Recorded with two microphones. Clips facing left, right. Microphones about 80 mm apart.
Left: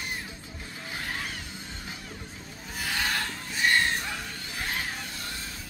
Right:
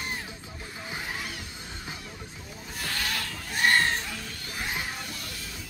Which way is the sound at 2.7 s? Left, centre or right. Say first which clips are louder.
Left 2 dB; centre.